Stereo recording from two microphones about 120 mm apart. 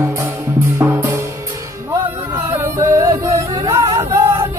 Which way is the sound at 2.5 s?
25° right (ahead or behind).